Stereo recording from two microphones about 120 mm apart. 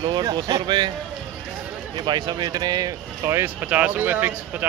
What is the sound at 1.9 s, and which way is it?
Speech, 40° right (ahead or behind).